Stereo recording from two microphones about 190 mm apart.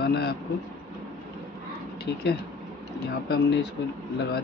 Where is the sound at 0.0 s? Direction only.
55° left (ahead or behind).